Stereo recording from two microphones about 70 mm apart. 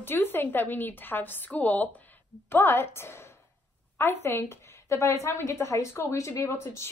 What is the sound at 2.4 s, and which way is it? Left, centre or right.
A woman's voice, left.